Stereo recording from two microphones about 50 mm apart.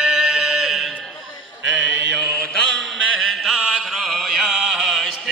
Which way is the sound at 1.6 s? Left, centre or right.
Centre.